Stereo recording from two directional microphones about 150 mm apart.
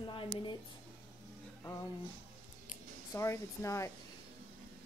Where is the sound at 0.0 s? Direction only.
35° left (ahead or behind).